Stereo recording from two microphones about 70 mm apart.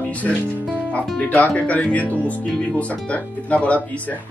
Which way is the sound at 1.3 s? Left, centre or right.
Centre.